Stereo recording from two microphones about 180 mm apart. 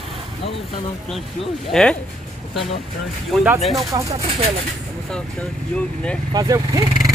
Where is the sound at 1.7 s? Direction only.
5° left (ahead or behind).